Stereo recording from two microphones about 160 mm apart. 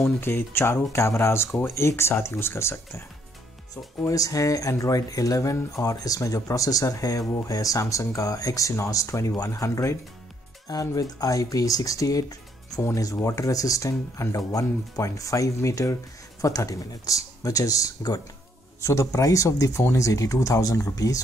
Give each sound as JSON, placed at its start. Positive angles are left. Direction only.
{"t": 0.0, "sound": "speech", "side_deg": 15}